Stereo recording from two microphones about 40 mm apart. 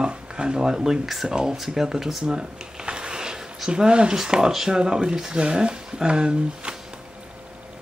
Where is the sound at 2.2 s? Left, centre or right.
Right.